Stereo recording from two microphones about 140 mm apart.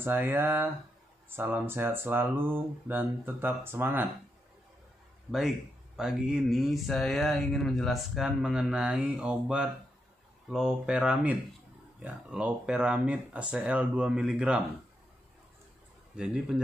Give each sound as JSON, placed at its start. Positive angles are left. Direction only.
{"t": 0.0, "sound": "speech", "side_deg": -15}
{"t": 5.9, "sound": "speech", "side_deg": -5}
{"t": 16.2, "sound": "speech", "side_deg": -5}